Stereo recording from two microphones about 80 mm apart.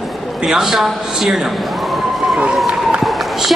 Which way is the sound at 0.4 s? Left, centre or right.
Centre.